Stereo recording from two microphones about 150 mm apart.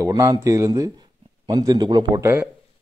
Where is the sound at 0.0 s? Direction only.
20° right (ahead or behind).